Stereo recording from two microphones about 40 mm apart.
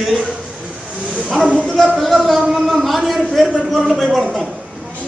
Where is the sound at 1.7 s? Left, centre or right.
Centre.